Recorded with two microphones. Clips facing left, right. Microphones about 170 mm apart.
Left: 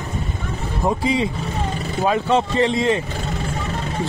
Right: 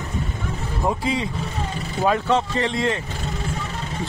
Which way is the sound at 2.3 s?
25° left (ahead or behind).